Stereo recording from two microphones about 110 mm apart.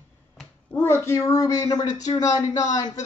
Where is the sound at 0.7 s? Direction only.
25° left (ahead or behind).